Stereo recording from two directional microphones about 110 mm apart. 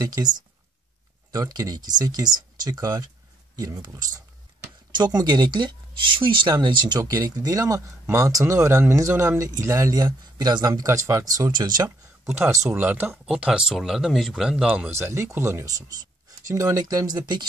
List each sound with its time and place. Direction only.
0.0 s speech: 35° right (ahead or behind)
1.3 s speech: 30° right (ahead or behind)
7.0 s speech: 30° right (ahead or behind)
12.4 s speech: 25° right (ahead or behind)
13.1 s speech: 5° right (ahead or behind)
14.9 s speech: 25° right (ahead or behind)